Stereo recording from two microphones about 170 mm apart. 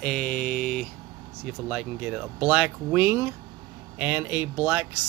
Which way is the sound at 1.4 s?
5° right (ahead or behind).